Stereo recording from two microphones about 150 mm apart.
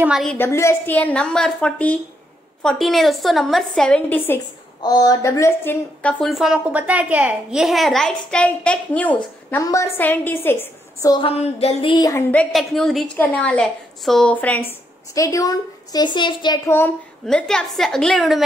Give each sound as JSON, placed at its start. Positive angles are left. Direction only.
{"t": 0.4, "sound": "a woman's voice", "side_deg": 20}
{"t": 4.8, "sound": "a woman's voice", "side_deg": 25}
{"t": 9.6, "sound": "a woman's voice", "side_deg": 20}
{"t": 11.1, "sound": "a sound", "side_deg": 30}
{"t": 11.3, "sound": "music", "side_deg": 45}
{"t": 11.9, "sound": "a woman's voice", "side_deg": 20}
{"t": 15.1, "sound": "speech", "side_deg": 20}
{"t": 16.7, "sound": "a woman's voice", "side_deg": 10}